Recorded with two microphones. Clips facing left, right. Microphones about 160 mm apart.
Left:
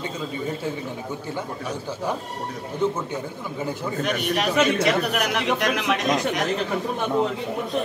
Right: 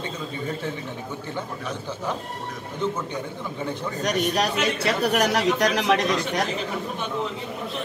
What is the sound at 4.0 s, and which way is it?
Speech, 40° right (ahead or behind).